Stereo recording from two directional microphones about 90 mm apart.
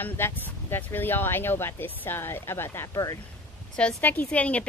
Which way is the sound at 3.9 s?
20° left (ahead or behind).